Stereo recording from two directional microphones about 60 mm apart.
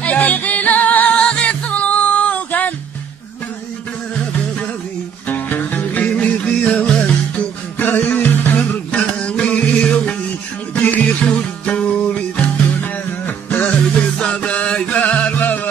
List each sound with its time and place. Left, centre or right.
0.0 s music: left
5.3 s music: left
7.3 s music: left
8.9 s music: left